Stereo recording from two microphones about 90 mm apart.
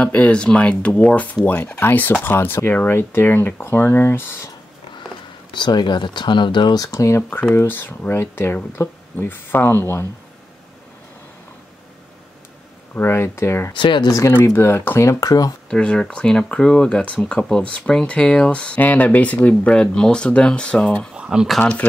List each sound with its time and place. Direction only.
0.0 s speech: 15° left (ahead or behind)
5.5 s speech: 60° left (ahead or behind)
6.8 s speech: 35° left (ahead or behind)
12.9 s speech: 30° left (ahead or behind)
13.7 s speech: 65° left (ahead or behind)
14.1 s speech: 30° left (ahead or behind)
15.7 s speech: 10° left (ahead or behind)
21.1 s speech: 10° right (ahead or behind)
21.5 s speech: 15° left (ahead or behind)